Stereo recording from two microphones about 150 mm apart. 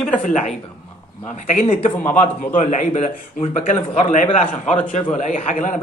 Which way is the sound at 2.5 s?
55° left (ahead or behind).